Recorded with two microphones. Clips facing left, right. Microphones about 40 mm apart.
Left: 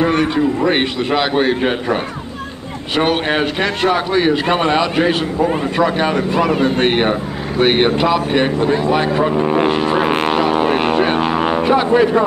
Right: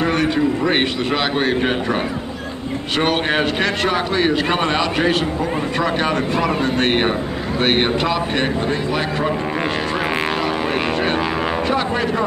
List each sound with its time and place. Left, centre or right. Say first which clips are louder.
0.2 s a man's voice: left 2 dB; centre
3.0 s a man's voice: left 3 dB; centre
6.9 s a man's voice: left 2 dB; centre; by 10.1 s left
10.7 s music: left 5 dB; centre
11.7 s a man's voice: left 7 dB; centre